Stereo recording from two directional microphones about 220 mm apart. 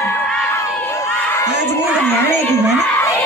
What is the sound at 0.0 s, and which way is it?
Crowd, 10° left (ahead or behind).